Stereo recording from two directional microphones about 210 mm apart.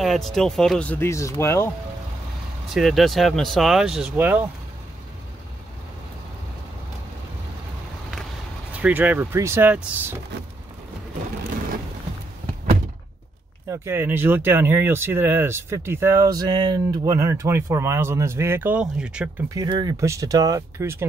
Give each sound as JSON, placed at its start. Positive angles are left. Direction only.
{"t": 0.0, "sound": "speech", "side_deg": 0}
{"t": 2.7, "sound": "speech", "side_deg": 0}
{"t": 8.7, "sound": "speech", "side_deg": -5}
{"t": 13.7, "sound": "speech", "side_deg": -10}
{"t": 19.5, "sound": "speech", "side_deg": -20}